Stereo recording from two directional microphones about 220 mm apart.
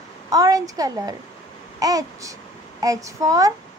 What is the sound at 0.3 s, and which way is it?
A woman's voice, 15° right (ahead or behind).